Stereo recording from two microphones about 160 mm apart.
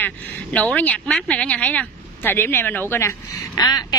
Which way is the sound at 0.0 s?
10° left (ahead or behind).